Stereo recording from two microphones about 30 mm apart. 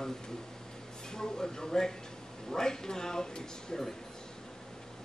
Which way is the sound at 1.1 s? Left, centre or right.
Centre.